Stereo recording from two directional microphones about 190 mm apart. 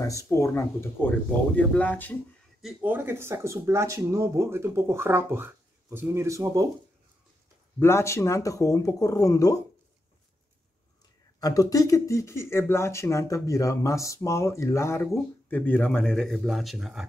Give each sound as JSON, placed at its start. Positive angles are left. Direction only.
{"t": 0.0, "sound": "speech", "side_deg": 15}
{"t": 2.6, "sound": "speech", "side_deg": -10}
{"t": 7.8, "sound": "speech", "side_deg": 15}
{"t": 11.3, "sound": "speech", "side_deg": 20}